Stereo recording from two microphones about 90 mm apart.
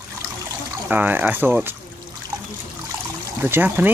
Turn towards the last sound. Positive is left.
turn(degrees=-20)  # may be behind; listen again after turning